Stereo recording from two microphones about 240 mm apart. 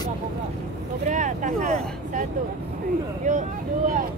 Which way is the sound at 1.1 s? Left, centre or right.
Right.